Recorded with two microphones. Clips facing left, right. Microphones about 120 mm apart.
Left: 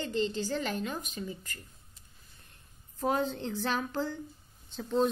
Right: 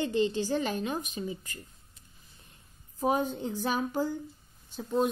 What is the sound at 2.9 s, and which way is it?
A woman's voice, 15° right (ahead or behind).